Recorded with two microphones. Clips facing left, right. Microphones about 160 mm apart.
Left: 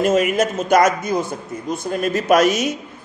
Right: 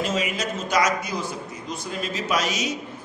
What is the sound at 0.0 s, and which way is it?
A man's voice, 50° left (ahead or behind).